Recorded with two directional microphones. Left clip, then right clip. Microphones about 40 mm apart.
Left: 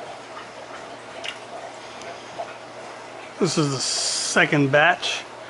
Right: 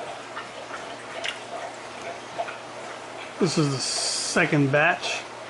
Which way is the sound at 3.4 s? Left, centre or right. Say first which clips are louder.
Left 2 dB; left.